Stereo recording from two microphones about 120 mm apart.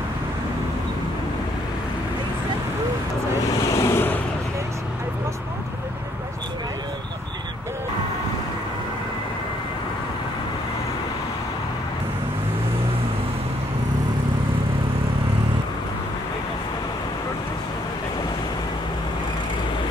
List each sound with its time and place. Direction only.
3.7 s vehicle: 20° left (ahead or behind)